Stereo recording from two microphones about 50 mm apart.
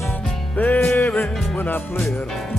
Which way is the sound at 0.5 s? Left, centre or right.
Left.